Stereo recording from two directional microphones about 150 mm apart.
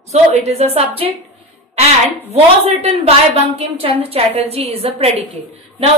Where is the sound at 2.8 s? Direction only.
45° right (ahead or behind).